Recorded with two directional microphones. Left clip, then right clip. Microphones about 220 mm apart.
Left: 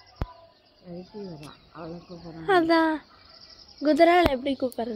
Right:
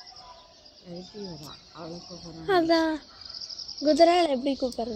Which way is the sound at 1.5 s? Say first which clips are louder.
Left 1 dB; 45° left (ahead or behind).